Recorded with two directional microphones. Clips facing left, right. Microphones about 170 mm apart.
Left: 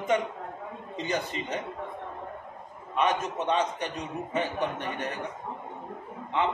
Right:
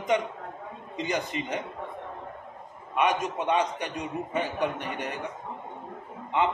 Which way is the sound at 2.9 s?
10° right (ahead or behind).